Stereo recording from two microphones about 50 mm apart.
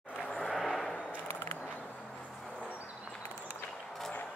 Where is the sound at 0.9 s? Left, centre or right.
Left.